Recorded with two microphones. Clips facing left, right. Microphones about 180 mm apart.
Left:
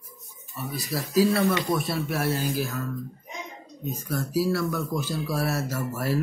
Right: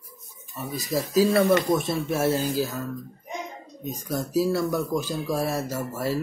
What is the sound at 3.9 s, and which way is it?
Speech, 15° right (ahead or behind).